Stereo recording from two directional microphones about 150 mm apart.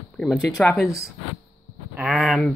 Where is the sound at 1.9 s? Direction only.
5° right (ahead or behind).